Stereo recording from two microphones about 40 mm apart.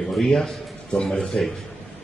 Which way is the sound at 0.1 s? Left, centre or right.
Centre.